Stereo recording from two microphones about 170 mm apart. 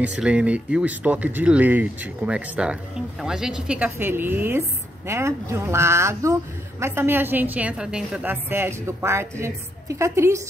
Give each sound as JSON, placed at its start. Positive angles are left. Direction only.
{"t": 0.0, "sound": "speech", "side_deg": -5}